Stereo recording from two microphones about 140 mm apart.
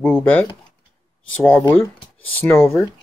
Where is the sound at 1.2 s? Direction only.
5° left (ahead or behind).